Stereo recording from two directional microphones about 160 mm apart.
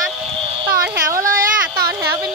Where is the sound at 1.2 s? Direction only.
60° right (ahead or behind).